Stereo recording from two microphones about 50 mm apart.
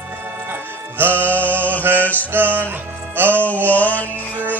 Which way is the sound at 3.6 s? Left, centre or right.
Left.